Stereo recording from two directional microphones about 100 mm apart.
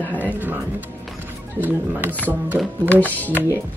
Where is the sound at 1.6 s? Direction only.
20° right (ahead or behind).